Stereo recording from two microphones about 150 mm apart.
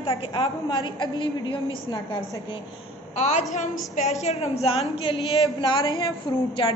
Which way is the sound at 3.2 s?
50° left (ahead or behind).